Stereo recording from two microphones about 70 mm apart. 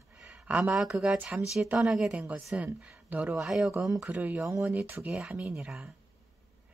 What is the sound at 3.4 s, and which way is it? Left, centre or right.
Speech, centre.